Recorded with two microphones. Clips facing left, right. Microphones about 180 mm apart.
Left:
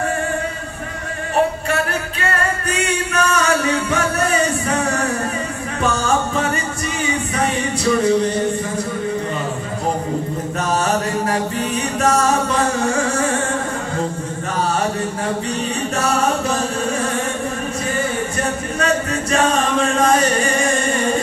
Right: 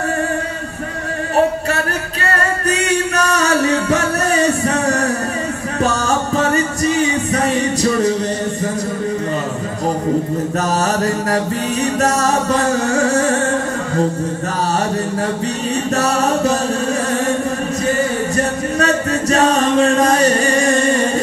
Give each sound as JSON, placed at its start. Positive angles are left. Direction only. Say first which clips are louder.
{"t": 2.7, "sound": "music", "louder": "right 5 dB", "side_deg": -40}
{"t": 11.0, "sound": "music", "louder": "right 3 dB", "side_deg": -40}
{"t": 16.0, "sound": "music", "louder": "right 2 dB", "side_deg": -40}
{"t": 18.8, "sound": "chant", "louder": "right 3 dB", "side_deg": -40}